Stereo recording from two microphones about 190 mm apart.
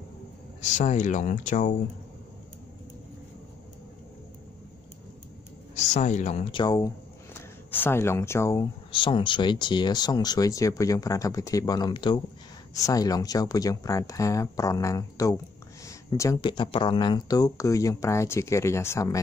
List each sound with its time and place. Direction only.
0.6 s speech: 40° left (ahead or behind)
5.8 s a woman's voice: 40° left (ahead or behind)
6.5 s speech: 20° left (ahead or behind)
8.9 s speech: 25° left (ahead or behind)